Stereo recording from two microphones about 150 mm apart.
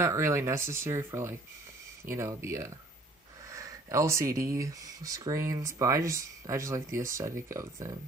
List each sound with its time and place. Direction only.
0.0 s speech: 20° right (ahead or behind)